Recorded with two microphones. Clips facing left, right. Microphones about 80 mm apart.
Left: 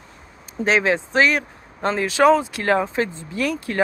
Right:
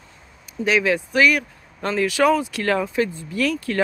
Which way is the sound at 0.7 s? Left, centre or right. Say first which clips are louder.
Left 1 dB; left.